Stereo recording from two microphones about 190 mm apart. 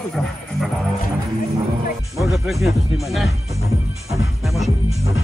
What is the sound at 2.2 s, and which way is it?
Speech, centre (ahead or behind).